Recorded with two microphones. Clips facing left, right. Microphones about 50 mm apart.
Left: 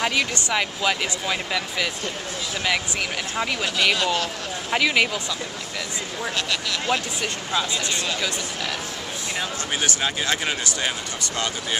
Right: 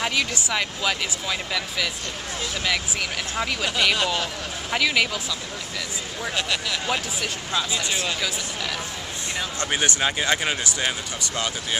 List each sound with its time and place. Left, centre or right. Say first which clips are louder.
0.0 s speech: left 2 dB; centre
3.3 s speech: even; centre
3.7 s speech: left 1 dB; centre
4.6 s speech: left 2 dB; centre
6.3 s speech: right 2 dB; centre
10.0 s speech: right 2 dB; centre